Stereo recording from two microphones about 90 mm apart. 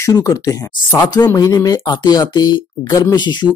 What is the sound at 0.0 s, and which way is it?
Speech, 35° left (ahead or behind).